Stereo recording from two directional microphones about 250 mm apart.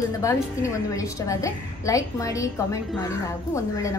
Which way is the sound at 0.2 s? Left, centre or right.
Centre.